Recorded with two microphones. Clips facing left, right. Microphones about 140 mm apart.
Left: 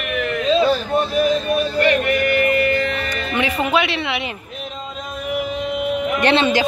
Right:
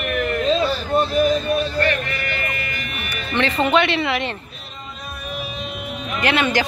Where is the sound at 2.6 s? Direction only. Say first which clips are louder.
Left 13 dB; 60° left (ahead or behind).